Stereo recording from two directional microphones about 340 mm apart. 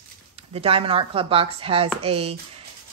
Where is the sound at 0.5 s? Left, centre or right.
Centre.